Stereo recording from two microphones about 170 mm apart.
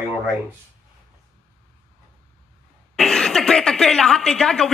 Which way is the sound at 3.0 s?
5° left (ahead or behind).